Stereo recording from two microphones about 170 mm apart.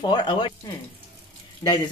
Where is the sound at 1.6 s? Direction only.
25° left (ahead or behind).